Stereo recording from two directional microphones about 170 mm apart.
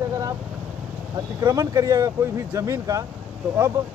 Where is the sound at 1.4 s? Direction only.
20° right (ahead or behind).